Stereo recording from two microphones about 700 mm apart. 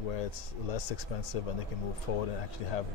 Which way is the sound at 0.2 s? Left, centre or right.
Left.